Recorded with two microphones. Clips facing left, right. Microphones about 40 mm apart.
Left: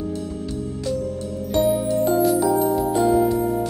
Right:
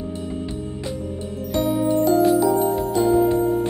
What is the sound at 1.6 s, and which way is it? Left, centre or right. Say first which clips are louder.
Music: left 2 dB; centre.